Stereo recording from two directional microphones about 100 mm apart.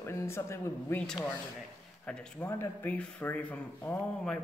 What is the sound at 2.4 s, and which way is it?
Speech, 20° left (ahead or behind).